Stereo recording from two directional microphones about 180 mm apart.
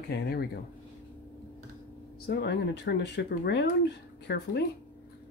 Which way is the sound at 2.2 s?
65° left (ahead or behind).